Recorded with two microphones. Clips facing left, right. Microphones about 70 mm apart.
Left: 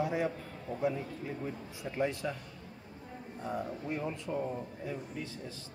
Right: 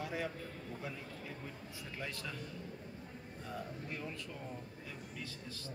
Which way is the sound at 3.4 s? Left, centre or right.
Left.